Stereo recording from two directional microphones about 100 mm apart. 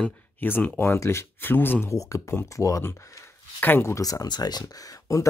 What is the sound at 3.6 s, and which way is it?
Speech, 20° left (ahead or behind).